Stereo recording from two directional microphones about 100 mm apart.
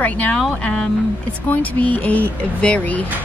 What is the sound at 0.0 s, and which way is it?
Speech, 15° left (ahead or behind).